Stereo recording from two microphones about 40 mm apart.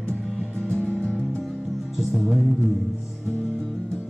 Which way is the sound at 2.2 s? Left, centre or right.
Centre.